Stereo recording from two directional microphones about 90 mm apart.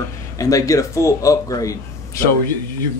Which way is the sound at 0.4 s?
40° left (ahead or behind).